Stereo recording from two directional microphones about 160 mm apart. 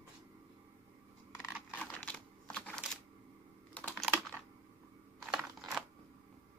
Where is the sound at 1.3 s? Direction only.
10° left (ahead or behind).